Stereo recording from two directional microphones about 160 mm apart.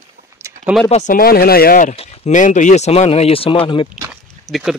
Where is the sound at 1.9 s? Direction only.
40° left (ahead or behind).